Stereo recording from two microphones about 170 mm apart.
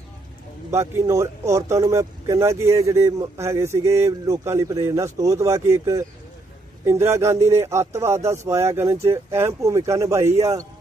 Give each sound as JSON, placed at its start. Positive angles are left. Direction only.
{"t": 0.7, "sound": "speech", "side_deg": -15}